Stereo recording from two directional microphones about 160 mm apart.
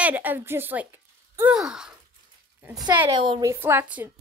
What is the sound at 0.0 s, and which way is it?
A woman's voice, 10° right (ahead or behind).